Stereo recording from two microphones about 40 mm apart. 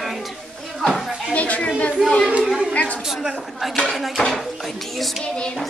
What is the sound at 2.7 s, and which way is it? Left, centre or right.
Speech, left.